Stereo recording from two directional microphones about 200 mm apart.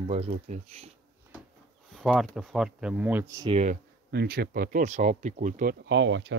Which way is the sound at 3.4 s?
30° right (ahead or behind).